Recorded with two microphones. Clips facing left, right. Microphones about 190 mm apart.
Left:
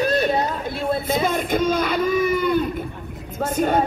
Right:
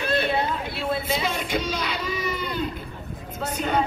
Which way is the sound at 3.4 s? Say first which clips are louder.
Left 5 dB; 50° left (ahead or behind).